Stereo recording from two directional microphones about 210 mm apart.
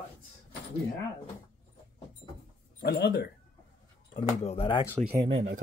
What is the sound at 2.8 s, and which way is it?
Speech, 50° left (ahead or behind).